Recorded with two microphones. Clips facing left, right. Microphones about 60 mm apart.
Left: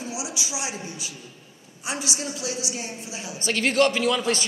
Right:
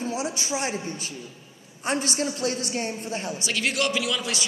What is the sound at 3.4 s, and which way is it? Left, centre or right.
A man's voice, left.